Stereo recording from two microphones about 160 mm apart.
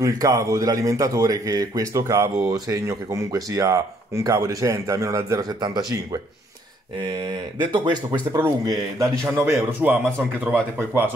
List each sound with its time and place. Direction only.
0.0 s a man's voice: 20° right (ahead or behind)
7.6 s a man's voice: 30° right (ahead or behind); by 11.1 s 10° right (ahead or behind)